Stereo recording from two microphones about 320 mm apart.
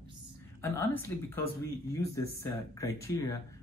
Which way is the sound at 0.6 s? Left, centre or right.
Centre.